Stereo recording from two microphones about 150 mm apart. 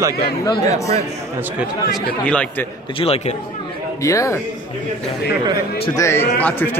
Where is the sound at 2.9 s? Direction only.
40° left (ahead or behind).